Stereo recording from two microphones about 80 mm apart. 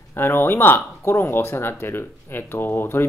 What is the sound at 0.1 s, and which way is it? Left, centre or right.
Speech, left.